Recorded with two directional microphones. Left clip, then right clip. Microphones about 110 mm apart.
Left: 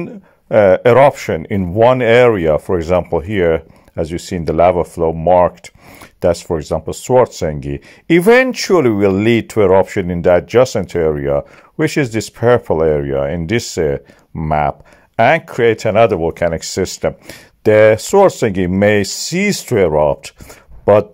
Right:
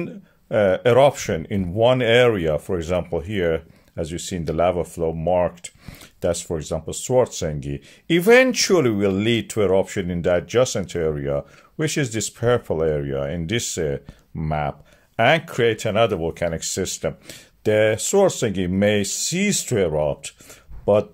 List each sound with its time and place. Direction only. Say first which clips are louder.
0.1 s speech: left 12 dB; 45° left (ahead or behind)